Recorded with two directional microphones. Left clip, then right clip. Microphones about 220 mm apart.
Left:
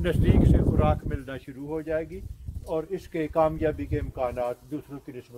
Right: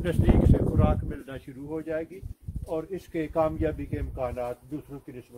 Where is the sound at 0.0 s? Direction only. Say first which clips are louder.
Left 1 dB; 15° left (ahead or behind).